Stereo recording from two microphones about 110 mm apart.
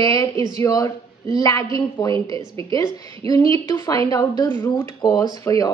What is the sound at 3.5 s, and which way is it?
A woman's voice, 30° left (ahead or behind).